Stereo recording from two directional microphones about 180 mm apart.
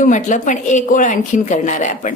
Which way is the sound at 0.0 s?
45° left (ahead or behind).